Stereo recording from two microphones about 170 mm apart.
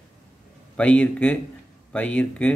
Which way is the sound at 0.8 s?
10° left (ahead or behind).